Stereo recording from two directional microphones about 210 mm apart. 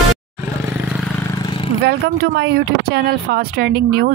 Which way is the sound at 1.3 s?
20° left (ahead or behind).